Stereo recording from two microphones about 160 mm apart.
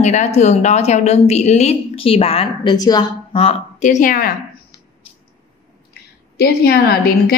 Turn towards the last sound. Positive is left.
turn(degrees=80)